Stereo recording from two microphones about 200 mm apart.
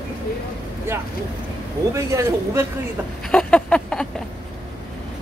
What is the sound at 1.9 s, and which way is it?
Speech, 15° right (ahead or behind).